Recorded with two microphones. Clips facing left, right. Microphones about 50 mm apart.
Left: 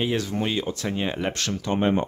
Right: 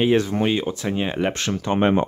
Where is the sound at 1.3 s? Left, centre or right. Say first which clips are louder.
Right 3 dB; right.